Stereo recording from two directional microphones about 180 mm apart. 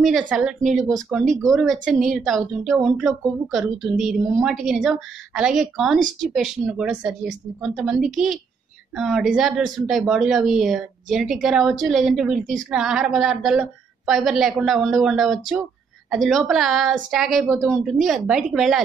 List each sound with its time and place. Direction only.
0.0 s a woman's voice: 5° right (ahead or behind)